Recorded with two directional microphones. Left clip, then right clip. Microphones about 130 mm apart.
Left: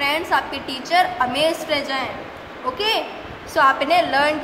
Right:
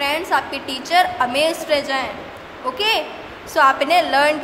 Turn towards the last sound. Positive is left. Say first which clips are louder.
# right 2 dB
turn(degrees=-20)  # may be behind; listen again after turning